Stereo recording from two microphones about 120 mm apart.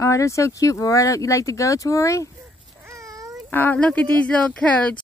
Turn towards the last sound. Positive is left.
turn(degrees=10)  # may be behind; listen again after turning